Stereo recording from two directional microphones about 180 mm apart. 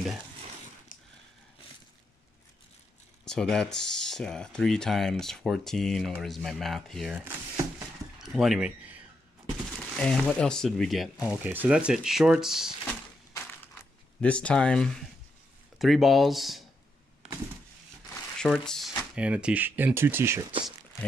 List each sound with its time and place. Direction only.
0.9 s a sound: 50° left (ahead or behind)
3.3 s speech: 5° left (ahead or behind)
8.2 s a sound: centre (ahead or behind)
9.9 s speech: 5° left (ahead or behind)
14.2 s speech: 5° left (ahead or behind)
18.0 s crumpling: 15° left (ahead or behind)
18.5 s speech: centre (ahead or behind)